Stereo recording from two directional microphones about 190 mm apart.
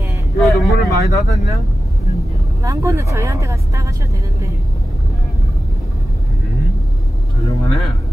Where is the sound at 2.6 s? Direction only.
15° right (ahead or behind).